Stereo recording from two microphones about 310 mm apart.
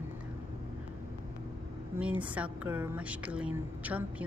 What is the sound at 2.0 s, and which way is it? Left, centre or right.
A woman's voice, centre.